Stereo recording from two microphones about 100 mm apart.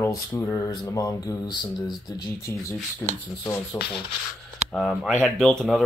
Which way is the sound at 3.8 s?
25° left (ahead or behind).